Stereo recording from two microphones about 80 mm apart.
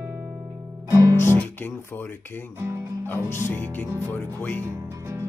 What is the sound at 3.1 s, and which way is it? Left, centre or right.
Music, left.